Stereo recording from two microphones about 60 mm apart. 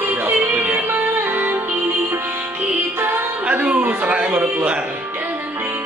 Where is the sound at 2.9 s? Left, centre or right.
Right.